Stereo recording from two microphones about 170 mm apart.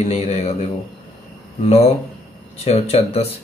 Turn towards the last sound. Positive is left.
turn(degrees=35)  # may be behind; listen again after turning